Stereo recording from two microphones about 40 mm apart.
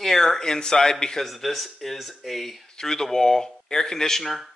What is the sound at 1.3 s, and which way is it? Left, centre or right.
Speech, centre.